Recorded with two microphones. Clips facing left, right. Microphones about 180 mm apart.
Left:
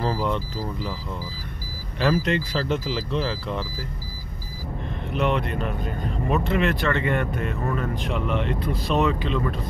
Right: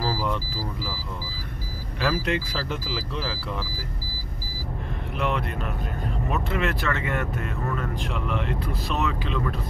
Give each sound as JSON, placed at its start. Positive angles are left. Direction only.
{"t": 0.0, "sound": "a sound", "side_deg": -5}
{"t": 2.0, "sound": "speech", "side_deg": -5}
{"t": 5.1, "sound": "speech", "side_deg": 0}